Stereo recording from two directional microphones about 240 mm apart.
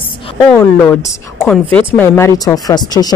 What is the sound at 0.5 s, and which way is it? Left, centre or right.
A woman's voice, centre.